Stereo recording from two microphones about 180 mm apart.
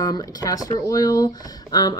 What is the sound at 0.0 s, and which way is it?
Speech, 20° left (ahead or behind).